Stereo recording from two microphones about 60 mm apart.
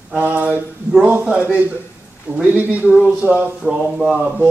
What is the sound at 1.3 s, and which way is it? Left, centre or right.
A man's voice, right.